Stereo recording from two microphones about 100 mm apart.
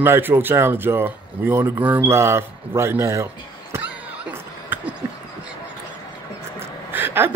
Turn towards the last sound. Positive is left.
turn(degrees=-20)  # may be behind; listen again after turning